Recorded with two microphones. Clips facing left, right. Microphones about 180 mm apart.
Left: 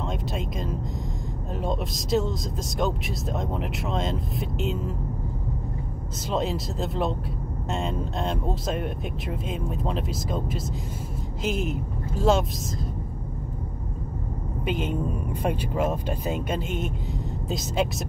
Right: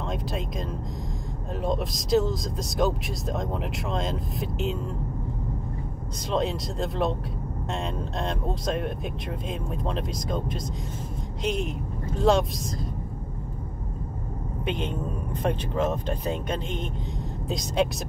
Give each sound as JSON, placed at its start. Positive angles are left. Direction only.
{"t": 0.1, "sound": "speech", "side_deg": 0}
{"t": 6.3, "sound": "speech", "side_deg": 0}
{"t": 14.6, "sound": "a woman's voice", "side_deg": 5}